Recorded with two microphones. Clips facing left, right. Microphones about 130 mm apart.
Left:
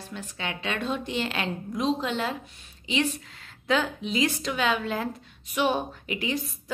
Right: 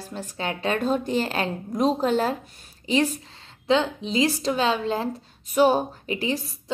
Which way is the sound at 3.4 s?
25° right (ahead or behind).